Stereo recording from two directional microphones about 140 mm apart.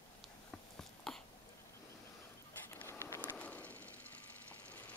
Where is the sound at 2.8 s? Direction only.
20° left (ahead or behind).